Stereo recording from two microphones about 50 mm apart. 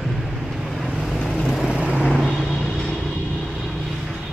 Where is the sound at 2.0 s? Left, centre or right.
Centre.